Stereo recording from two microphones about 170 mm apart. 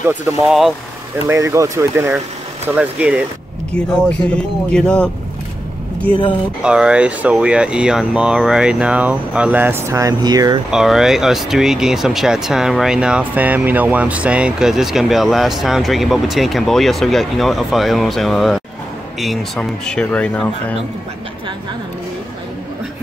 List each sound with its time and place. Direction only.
0.1 s speech: centre (ahead or behind)
1.3 s speech: 20° right (ahead or behind)
4.3 s speech: 5° left (ahead or behind)
6.6 s speech: 5° right (ahead or behind); by 10.6 s 25° right (ahead or behind)
10.7 s speech: 5° right (ahead or behind)